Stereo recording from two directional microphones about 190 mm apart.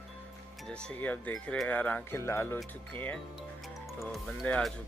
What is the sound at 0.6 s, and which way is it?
Speech, 5° left (ahead or behind).